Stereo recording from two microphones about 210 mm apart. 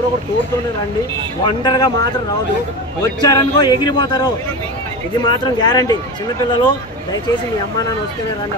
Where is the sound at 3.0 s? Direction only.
20° left (ahead or behind).